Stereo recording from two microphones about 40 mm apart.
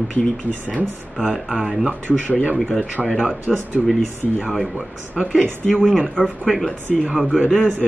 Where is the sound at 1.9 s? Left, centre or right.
Right.